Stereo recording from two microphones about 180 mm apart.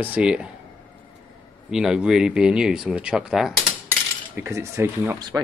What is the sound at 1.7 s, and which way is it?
Speech, 5° right (ahead or behind).